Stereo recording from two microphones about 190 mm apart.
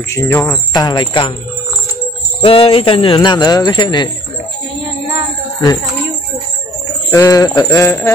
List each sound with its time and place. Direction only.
0.1 s speech: 10° left (ahead or behind)
2.4 s speech: 30° left (ahead or behind)
7.1 s speech: 15° left (ahead or behind)